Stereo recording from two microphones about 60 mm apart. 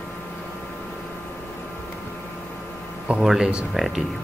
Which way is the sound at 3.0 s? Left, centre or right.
Centre.